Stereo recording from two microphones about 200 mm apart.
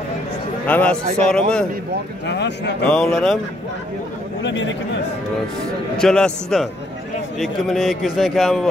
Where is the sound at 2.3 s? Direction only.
60° left (ahead or behind).